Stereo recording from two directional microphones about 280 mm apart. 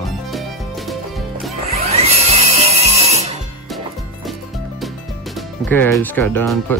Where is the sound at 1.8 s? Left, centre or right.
Right.